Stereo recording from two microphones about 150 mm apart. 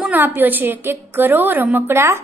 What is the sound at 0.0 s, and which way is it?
A woman's voice, 10° right (ahead or behind).